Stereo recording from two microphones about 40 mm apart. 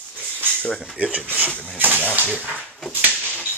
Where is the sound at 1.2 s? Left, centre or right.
Right.